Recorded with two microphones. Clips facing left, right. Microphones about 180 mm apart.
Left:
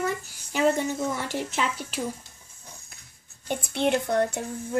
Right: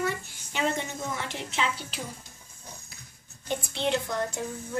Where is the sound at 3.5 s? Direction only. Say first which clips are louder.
Left 4 dB; 55° left (ahead or behind).